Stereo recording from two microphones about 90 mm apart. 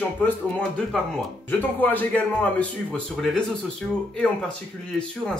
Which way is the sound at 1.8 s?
20° left (ahead or behind).